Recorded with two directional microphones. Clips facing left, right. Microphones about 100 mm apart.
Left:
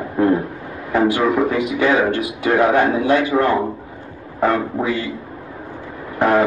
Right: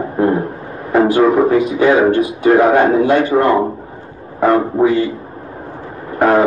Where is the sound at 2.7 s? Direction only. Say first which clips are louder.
Right 4 dB; 40° right (ahead or behind).